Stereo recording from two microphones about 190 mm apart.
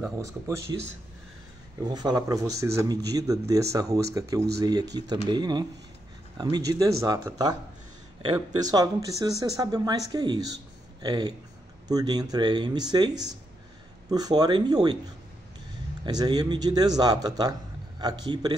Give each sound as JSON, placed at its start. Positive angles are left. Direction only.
{"t": 0.2, "sound": "speech", "side_deg": -15}
{"t": 1.8, "sound": "speech", "side_deg": -20}
{"t": 16.1, "sound": "speech", "side_deg": -20}